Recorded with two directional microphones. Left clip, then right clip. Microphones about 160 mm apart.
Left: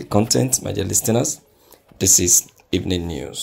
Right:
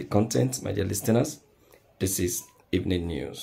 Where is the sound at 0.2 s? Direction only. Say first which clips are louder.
Left 8 dB; 35° left (ahead or behind).